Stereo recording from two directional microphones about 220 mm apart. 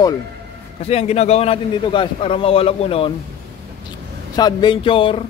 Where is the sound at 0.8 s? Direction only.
30° left (ahead or behind).